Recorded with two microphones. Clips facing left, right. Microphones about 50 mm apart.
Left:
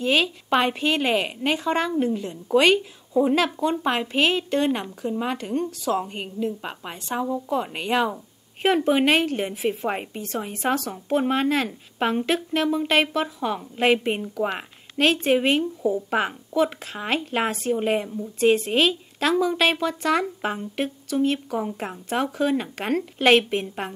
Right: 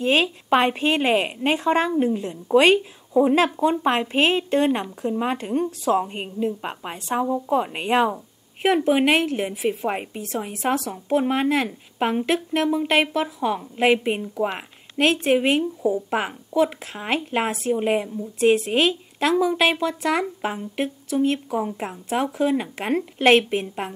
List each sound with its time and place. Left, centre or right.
0.0 s a woman's voice: right; by 3.8 s centre
4.2 s a woman's voice: right
4.8 s speech: centre
5.2 s a woman's voice: right
7.7 s a woman's voice: right
8.6 s a woman's voice: centre
12.7 s a woman's voice: centre